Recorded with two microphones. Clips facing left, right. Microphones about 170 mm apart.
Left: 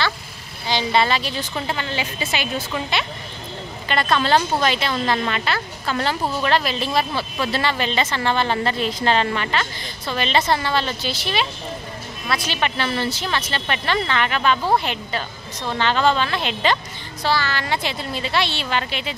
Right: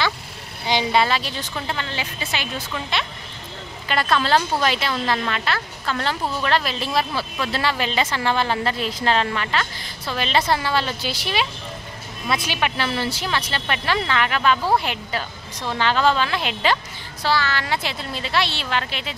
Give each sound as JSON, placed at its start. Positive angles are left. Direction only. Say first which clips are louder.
{"t": 0.7, "sound": "speech", "louder": "even", "side_deg": -15}
{"t": 1.0, "sound": "speech", "louder": "left 1 dB", "side_deg": 0}
{"t": 3.9, "sound": "speech", "louder": "left 1 dB", "side_deg": -5}
{"t": 12.5, "sound": "speech", "louder": "left 1 dB", "side_deg": -5}